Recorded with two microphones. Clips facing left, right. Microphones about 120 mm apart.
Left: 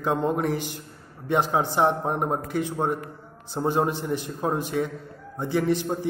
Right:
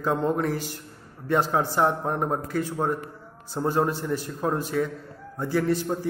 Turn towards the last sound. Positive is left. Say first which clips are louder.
# even
turn(degrees=20)  # may be behind; listen again after turning